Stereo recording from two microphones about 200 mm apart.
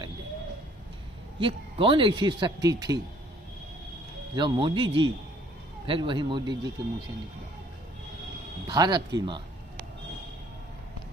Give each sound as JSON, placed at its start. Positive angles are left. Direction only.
{"t": 1.4, "sound": "speech", "side_deg": -25}
{"t": 4.4, "sound": "speech", "side_deg": -25}
{"t": 8.6, "sound": "speech", "side_deg": -20}